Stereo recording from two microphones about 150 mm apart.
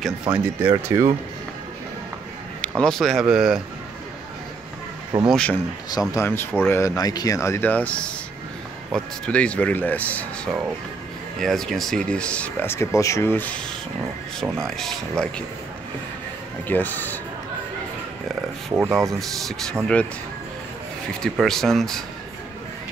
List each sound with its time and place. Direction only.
0.3 s speech: 15° right (ahead or behind)
2.8 s speech: 5° left (ahead or behind)
5.3 s speech: 5° left (ahead or behind)
5.9 s speech: 20° left (ahead or behind)
14.4 s speech: centre (ahead or behind)
16.6 s speech: 10° left (ahead or behind)
18.9 s speech: centre (ahead or behind)
21.2 s speech: 5° left (ahead or behind)